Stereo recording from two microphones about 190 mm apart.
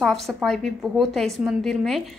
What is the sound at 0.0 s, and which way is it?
A woman's voice, centre (ahead or behind).